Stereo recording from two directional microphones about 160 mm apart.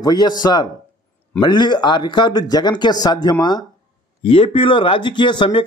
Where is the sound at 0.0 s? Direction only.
25° left (ahead or behind).